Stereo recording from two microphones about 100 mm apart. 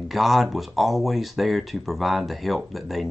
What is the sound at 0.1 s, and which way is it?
Speech, centre (ahead or behind).